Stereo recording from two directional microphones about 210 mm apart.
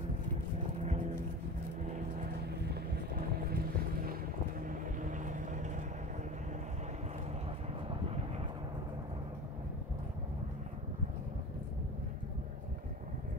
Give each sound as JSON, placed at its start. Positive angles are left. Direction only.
{"t": 2.7, "sound": "music", "side_deg": -45}
{"t": 4.6, "sound": "vehicle", "side_deg": -40}